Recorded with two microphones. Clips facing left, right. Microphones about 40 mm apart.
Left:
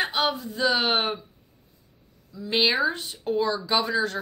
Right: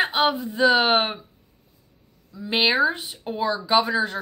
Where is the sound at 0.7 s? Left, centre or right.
Centre.